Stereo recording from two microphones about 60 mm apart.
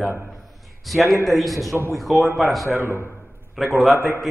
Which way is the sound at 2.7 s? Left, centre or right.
Right.